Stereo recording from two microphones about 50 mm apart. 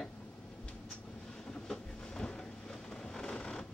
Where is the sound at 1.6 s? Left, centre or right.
Centre.